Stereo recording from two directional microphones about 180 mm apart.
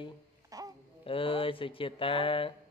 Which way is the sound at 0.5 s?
20° right (ahead or behind).